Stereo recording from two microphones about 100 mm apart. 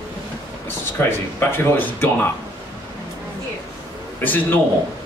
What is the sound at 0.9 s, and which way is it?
A man's voice, 20° left (ahead or behind).